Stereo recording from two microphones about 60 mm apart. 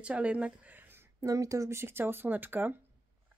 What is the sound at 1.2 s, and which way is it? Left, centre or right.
Speech, right.